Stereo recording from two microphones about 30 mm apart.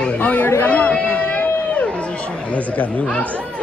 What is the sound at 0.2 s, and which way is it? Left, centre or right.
Speech, left.